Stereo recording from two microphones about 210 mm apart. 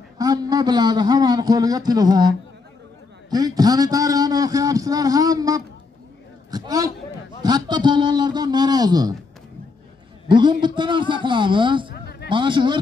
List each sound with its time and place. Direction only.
0.2 s a man's voice: 20° right (ahead or behind)
6.5 s a sound: 20° right (ahead or behind)
7.4 s a man's voice: 20° right (ahead or behind)
10.2 s a man's voice: 20° right (ahead or behind)
11.9 s a sound: 50° left (ahead or behind)
12.3 s a man's voice: 25° right (ahead or behind)